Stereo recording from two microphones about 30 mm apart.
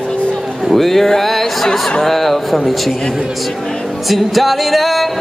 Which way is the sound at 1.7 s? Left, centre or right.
Left.